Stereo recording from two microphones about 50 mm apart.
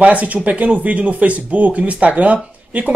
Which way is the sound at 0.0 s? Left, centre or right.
Right.